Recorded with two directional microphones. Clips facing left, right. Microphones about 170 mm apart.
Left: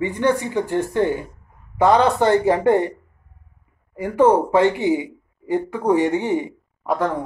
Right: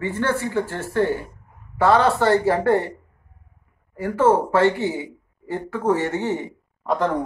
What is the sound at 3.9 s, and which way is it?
Speech, 15° left (ahead or behind).